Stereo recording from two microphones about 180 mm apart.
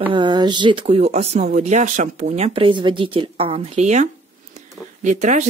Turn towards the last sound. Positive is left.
turn(degrees=-45)  # may be behind; listen again after turning